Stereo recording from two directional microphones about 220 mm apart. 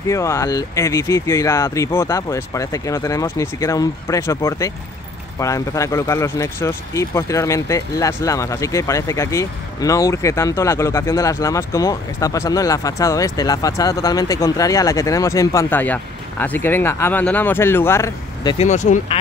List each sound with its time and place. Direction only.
0.1 s speech: 15° left (ahead or behind)
18.7 s speech: 35° left (ahead or behind)